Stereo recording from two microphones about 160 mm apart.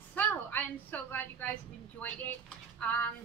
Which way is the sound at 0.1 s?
10° left (ahead or behind).